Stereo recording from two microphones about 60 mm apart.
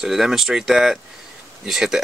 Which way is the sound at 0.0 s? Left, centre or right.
Centre.